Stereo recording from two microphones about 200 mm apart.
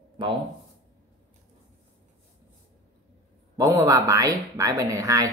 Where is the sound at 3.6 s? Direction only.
15° right (ahead or behind).